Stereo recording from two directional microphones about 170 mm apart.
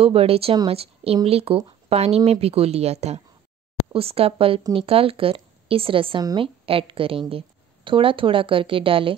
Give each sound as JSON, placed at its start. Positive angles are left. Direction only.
{"t": 0.0, "sound": "a woman's voice", "side_deg": -35}